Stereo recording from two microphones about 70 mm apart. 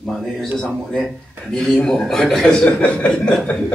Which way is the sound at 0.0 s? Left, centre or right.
Centre.